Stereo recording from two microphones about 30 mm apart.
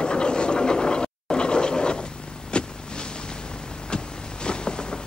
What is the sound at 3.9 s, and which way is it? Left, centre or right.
Vehicle, left.